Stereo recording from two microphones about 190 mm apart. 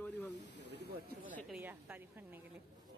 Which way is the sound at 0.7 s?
55° right (ahead or behind).